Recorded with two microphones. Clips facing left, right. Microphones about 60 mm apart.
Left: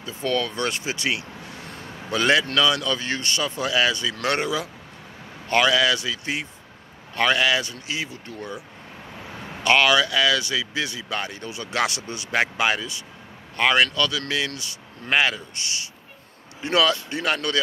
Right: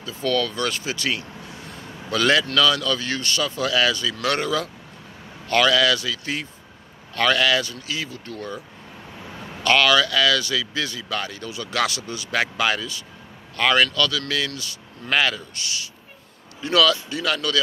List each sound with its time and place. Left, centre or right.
0.0 s speech: left